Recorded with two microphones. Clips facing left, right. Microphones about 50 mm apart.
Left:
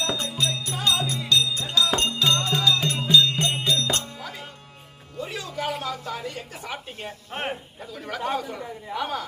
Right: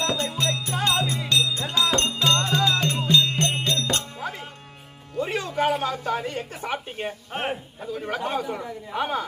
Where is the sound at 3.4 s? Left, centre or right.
Centre.